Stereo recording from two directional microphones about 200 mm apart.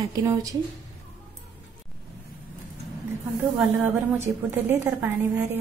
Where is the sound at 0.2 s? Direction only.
15° right (ahead or behind).